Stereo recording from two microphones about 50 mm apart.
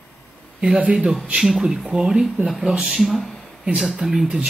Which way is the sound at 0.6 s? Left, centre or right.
Right.